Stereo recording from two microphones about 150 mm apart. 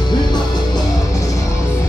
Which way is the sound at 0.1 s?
30° left (ahead or behind).